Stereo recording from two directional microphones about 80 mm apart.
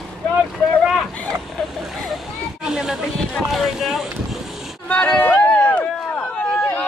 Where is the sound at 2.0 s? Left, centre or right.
Centre.